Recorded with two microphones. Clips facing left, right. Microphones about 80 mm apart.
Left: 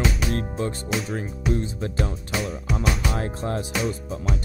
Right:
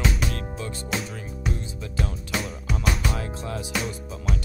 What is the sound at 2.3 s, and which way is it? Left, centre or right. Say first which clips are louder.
Speech: left 2 dB; centre.